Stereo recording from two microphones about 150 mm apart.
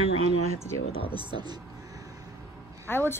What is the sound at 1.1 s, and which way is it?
Speech, 30° right (ahead or behind).